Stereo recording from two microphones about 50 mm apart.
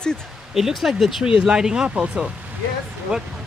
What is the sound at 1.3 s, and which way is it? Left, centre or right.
Speech, centre.